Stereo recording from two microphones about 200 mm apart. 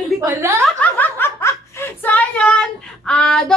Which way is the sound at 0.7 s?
10° left (ahead or behind).